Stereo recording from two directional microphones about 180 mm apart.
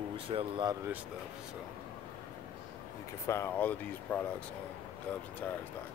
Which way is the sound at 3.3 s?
15° left (ahead or behind).